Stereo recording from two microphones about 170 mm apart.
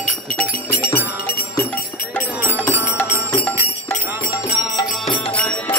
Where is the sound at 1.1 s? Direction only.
65° left (ahead or behind).